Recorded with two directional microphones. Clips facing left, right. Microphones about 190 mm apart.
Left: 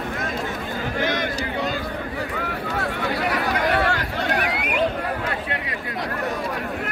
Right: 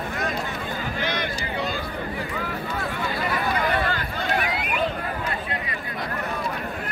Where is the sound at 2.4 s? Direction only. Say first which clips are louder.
Left 3 dB; 70° left (ahead or behind).